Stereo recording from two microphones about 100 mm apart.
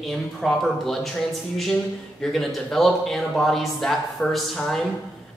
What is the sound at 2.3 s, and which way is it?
Speech, centre (ahead or behind).